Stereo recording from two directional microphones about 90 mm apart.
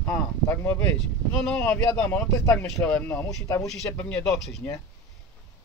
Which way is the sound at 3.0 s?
25° left (ahead or behind).